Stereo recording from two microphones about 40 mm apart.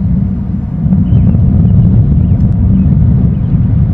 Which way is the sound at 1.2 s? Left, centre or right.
Left.